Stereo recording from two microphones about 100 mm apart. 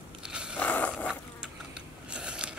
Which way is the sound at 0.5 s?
15° left (ahead or behind).